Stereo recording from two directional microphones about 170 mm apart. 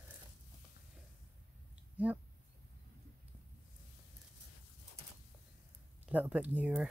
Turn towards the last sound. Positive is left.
turn(degrees=-10)  # may be behind; listen again after turning